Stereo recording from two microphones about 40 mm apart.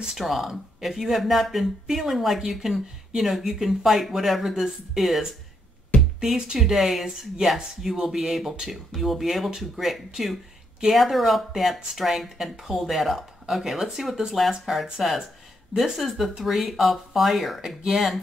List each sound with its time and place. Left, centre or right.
0.1 s speech: centre
6.3 s speech: centre
6.6 s speech: centre